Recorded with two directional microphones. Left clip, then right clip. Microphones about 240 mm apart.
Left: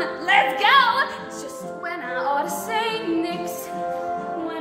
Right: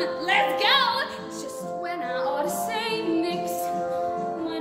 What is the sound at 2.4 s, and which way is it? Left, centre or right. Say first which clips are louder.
Music: left 2 dB; centre.